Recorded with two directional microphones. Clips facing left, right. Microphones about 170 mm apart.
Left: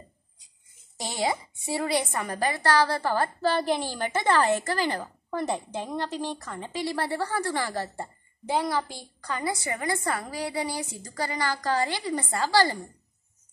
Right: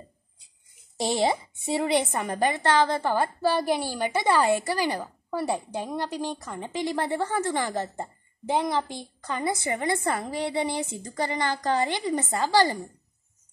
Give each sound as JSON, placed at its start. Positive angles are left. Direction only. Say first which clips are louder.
{"t": 0.9, "sound": "a woman's voice", "louder": "right 4 dB", "side_deg": -25}